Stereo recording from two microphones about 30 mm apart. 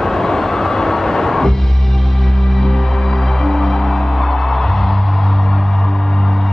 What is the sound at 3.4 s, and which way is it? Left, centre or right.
Music, centre.